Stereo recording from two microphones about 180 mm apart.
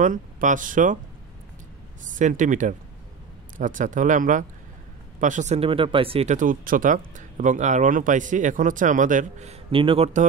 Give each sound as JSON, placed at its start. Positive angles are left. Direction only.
{"t": 0.0, "sound": "speech", "side_deg": -45}
{"t": 2.1, "sound": "speech", "side_deg": -45}